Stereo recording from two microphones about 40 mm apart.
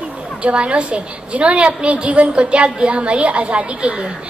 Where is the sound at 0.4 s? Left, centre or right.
Right.